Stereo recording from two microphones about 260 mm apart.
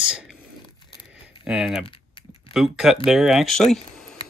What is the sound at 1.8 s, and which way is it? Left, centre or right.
Typing, left.